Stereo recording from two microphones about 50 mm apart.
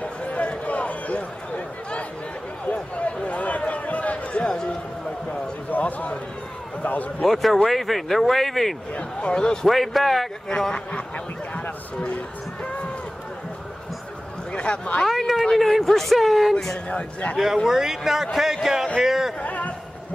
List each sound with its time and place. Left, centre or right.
0.0 s a sound: left
6.8 s speech: left
7.2 s speech: centre
8.9 s speech: centre
9.7 s speech: centre
10.7 s a man's voice: left
14.5 s speech: left
15.0 s speech: centre
16.9 s a man's voice: left
17.6 s speech: centre
19.4 s a sound: left